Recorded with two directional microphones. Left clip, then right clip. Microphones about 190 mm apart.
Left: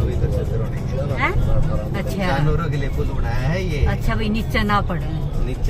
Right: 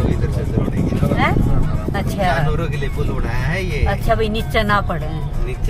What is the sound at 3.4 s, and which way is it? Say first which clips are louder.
Speech: right 3 dB; 15° right (ahead or behind).